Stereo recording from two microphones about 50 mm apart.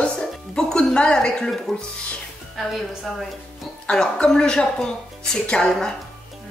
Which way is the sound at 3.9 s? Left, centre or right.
Centre.